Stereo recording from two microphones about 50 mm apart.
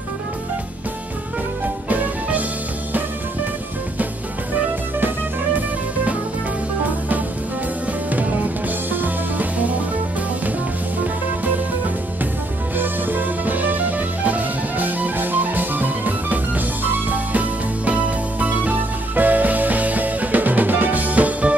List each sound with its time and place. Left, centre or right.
1.9 s music: right
8.9 s music: right
12.7 s music: right